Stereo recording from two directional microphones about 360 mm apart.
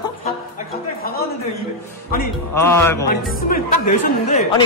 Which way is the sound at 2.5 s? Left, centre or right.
Centre.